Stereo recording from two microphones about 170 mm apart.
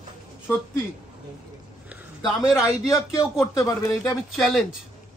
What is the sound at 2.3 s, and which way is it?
Speech, centre (ahead or behind).